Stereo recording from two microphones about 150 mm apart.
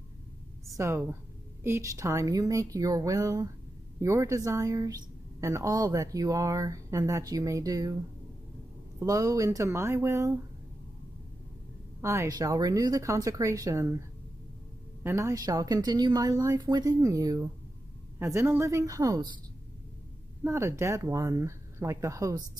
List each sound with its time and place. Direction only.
0.7 s speech: 20° right (ahead or behind)
9.0 s speech: 20° right (ahead or behind)
12.0 s speech: 20° right (ahead or behind)
15.0 s speech: 20° right (ahead or behind)
20.4 s speech: 20° right (ahead or behind)